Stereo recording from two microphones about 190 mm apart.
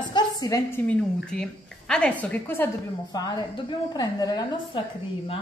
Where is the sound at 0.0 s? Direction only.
20° left (ahead or behind).